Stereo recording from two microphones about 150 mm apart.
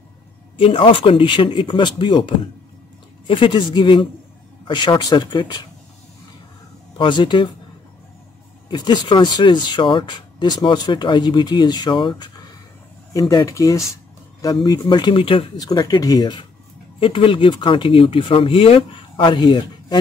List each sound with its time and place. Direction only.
0.6 s speech: 35° left (ahead or behind)
7.0 s speech: 30° left (ahead or behind)
8.6 s speech: 30° left (ahead or behind)